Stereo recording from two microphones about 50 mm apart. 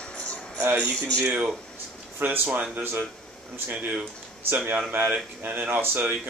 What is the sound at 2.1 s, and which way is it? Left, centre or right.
Speech, right.